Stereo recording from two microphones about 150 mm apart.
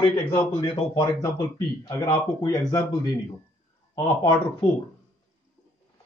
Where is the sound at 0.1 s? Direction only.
15° left (ahead or behind).